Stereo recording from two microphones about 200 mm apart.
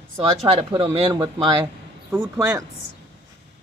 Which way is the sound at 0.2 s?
25° right (ahead or behind).